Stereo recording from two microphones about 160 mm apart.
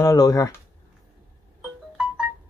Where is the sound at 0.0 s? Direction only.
20° left (ahead or behind).